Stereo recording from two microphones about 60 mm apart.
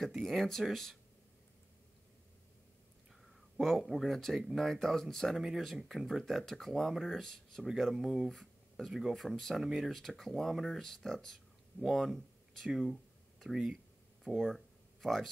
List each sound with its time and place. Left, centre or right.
0.0 s speech: centre
3.5 s speech: centre
7.6 s speech: centre
14.2 s a sound: centre